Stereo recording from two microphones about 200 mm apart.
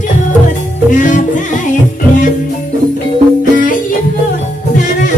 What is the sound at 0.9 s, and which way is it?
Music, 40° left (ahead or behind).